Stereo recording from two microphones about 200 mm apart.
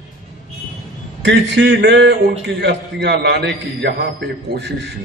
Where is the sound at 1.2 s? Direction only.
65° right (ahead or behind).